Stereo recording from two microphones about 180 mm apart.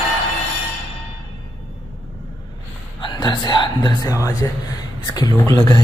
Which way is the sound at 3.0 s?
25° left (ahead or behind).